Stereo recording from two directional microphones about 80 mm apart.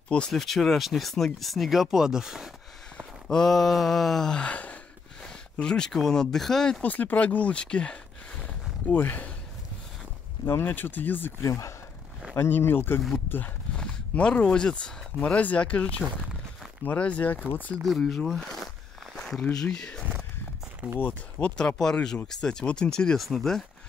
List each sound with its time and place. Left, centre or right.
0.3 s speech: centre
3.3 s speech: centre
6.9 s speech: centre
8.9 s speech: left
10.4 s speech: left
11.4 s speech: left
12.4 s speech: left
13.7 s speech: centre
17.8 s speech: centre
19.1 s a sound: centre
19.5 s speech: centre
21.0 s speech: centre